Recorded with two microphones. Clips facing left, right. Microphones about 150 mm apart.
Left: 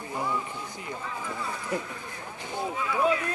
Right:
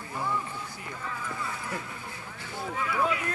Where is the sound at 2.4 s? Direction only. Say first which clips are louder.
Left 2 dB; 20° left (ahead or behind).